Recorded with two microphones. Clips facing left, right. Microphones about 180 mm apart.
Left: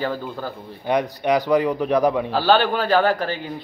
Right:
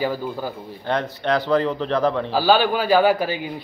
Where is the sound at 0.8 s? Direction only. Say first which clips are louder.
Left 2 dB; 15° left (ahead or behind).